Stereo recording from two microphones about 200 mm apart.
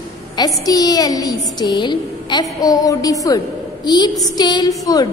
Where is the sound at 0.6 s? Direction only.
20° left (ahead or behind).